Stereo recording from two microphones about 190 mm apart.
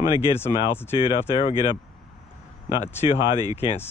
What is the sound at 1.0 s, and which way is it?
Speech, 20° right (ahead or behind).